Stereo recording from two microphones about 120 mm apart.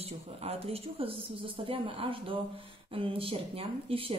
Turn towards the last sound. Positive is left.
turn(degrees=-50)  # may be behind; listen again after turning